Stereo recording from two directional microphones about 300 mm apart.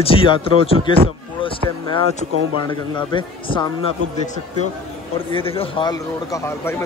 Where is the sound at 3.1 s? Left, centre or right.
Centre.